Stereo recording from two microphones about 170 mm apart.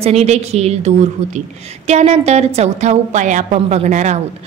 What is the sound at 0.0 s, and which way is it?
A woman's voice, 40° right (ahead or behind).